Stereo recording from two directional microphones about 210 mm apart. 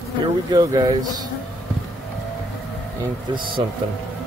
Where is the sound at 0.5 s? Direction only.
20° right (ahead or behind).